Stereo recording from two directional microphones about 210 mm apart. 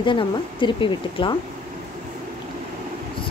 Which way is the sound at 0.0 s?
20° left (ahead or behind).